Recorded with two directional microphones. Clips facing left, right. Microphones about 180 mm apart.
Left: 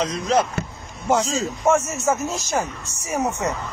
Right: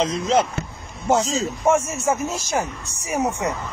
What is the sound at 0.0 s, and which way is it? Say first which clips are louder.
A man's voice: right 1 dB; 25° right (ahead or behind).